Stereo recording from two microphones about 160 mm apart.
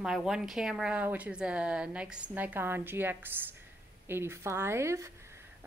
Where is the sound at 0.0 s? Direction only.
5° right (ahead or behind).